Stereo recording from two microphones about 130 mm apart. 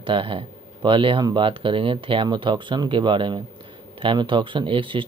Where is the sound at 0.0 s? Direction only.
40° right (ahead or behind).